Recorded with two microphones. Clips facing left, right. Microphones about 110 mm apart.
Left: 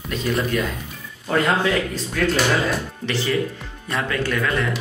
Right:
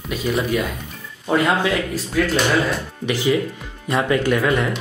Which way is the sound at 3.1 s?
15° right (ahead or behind).